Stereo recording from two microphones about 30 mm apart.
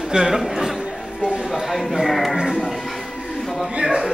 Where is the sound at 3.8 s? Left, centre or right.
Right.